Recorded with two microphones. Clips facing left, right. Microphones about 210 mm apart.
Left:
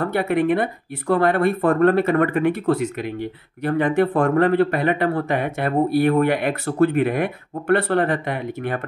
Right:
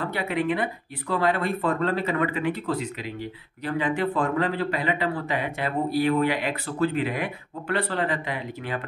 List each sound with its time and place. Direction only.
0.0 s speech: 50° left (ahead or behind)